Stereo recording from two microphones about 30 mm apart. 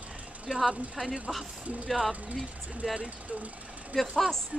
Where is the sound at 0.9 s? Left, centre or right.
Centre.